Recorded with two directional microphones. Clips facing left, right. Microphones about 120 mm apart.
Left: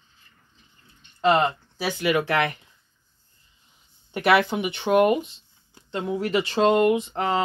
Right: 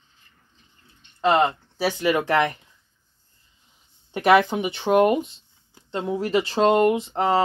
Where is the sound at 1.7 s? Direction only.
35° right (ahead or behind).